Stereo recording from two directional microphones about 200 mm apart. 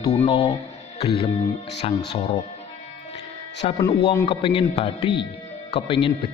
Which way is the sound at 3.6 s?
30° left (ahead or behind).